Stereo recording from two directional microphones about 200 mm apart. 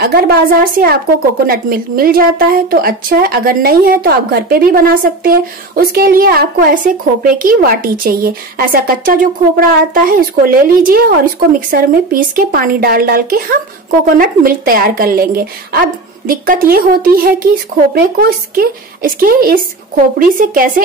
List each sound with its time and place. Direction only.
0.0 s a woman's voice: 50° right (ahead or behind)